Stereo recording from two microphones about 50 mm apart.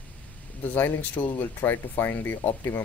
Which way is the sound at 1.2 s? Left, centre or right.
Left.